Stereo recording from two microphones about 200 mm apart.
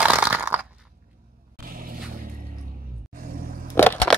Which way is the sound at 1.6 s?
45° right (ahead or behind).